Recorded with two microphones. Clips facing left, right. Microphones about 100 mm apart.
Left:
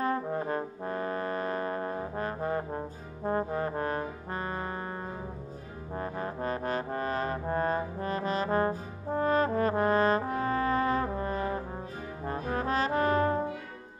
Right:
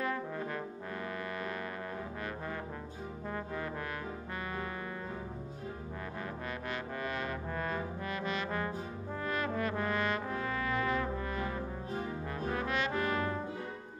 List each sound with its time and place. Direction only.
0.0 s brass instrument: 35° left (ahead or behind)
3.3 s trombone: 40° left (ahead or behind)
5.9 s trombone: 40° left (ahead or behind)
12.3 s brass instrument: 35° left (ahead or behind)